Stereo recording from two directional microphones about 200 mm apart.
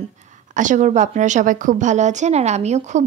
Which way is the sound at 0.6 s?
40° right (ahead or behind).